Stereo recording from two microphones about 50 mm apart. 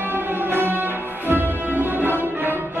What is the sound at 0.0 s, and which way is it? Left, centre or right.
Music, right.